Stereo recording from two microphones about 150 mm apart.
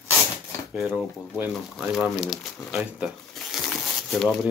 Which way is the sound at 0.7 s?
5° right (ahead or behind).